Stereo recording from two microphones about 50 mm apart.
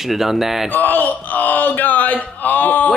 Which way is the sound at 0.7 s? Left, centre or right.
Left.